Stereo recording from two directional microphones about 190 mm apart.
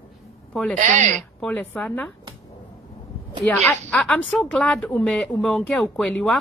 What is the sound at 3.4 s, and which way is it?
Speech, centre (ahead or behind).